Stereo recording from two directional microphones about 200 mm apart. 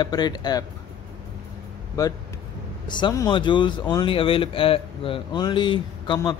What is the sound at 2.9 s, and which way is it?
Speech, 20° left (ahead or behind).